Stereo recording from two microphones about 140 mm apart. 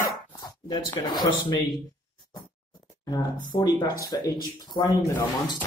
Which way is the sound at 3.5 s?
35° left (ahead or behind).